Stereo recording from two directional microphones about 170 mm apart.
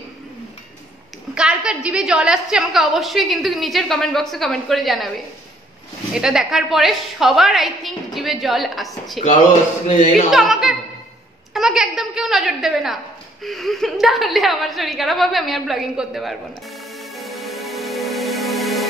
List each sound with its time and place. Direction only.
1.3 s a woman's voice: 5° right (ahead or behind)
10.3 s a woman's voice: centre (ahead or behind)
17.1 s music: centre (ahead or behind)